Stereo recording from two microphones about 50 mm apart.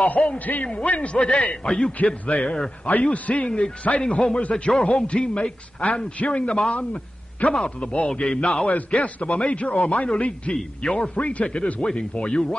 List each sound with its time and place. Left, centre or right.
0.2 s speech: centre
0.7 s a man's voice: left
1.1 s a man's voice: centre
8.6 s a man's voice: left
10.5 s speech: centre
11.1 s a man's voice: left
11.4 s speech: centre